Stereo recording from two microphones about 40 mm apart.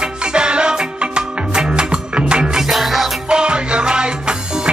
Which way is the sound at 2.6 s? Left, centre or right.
Centre.